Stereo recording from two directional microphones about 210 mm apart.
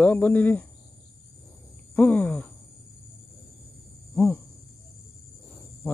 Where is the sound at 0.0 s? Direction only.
10° left (ahead or behind).